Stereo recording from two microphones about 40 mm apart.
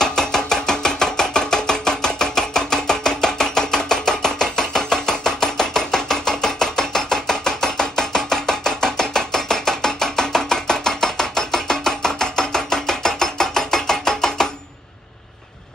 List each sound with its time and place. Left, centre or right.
0.0 s chopping: centre